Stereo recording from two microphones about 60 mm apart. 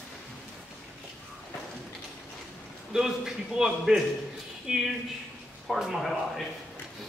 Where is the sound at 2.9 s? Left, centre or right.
Centre.